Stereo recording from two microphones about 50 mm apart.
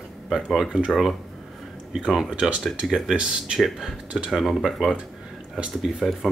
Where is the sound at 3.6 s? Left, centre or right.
Centre.